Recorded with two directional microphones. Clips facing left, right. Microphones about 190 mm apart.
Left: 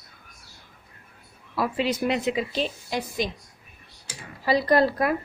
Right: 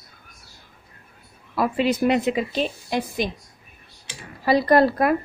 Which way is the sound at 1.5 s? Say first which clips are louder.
Right 4 dB; 55° right (ahead or behind).